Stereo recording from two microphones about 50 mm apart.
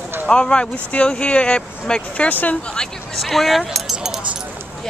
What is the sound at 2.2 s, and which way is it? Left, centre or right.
Speech, left.